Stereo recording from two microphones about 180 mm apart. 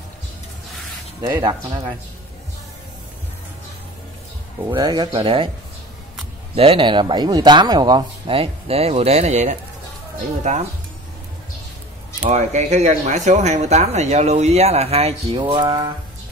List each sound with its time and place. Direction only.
1.2 s speech: 20° right (ahead or behind)
4.6 s speech: 20° right (ahead or behind)
6.5 s speech: 30° right (ahead or behind)
12.2 s speech: 40° right (ahead or behind); by 15.9 s 25° right (ahead or behind)